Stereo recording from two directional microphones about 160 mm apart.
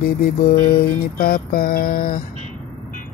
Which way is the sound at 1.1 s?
70° left (ahead or behind).